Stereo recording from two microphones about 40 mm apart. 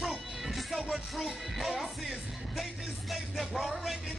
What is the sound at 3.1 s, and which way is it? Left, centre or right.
Music, centre.